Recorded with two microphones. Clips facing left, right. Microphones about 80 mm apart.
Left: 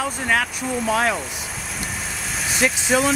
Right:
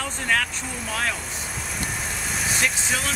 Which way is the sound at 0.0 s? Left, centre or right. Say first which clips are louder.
Left 3 dB; centre.